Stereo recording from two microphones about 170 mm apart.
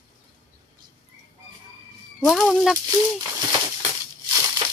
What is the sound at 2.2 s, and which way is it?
Speech, centre (ahead or behind).